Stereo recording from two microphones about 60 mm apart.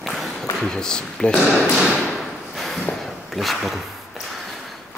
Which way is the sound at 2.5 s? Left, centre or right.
Centre.